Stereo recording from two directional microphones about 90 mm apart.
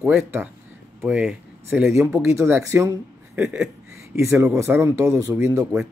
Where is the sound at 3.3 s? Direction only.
15° right (ahead or behind).